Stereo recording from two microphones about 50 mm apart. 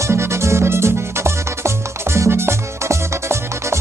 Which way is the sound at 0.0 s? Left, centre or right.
Right.